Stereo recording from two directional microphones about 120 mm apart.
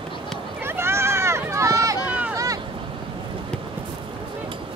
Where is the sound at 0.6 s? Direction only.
20° right (ahead or behind).